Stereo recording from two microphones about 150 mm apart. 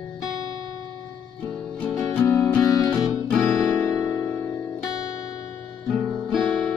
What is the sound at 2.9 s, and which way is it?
Music, 10° left (ahead or behind).